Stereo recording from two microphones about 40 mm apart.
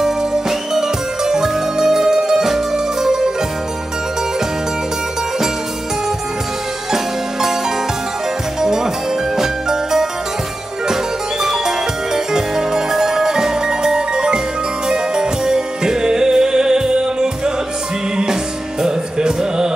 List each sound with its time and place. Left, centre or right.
0.0 s music: centre
8.5 s music: centre
11.4 s music: centre